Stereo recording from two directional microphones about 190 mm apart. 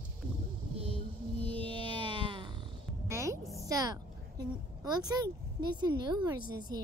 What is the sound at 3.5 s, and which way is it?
A woman's voice, 20° right (ahead or behind).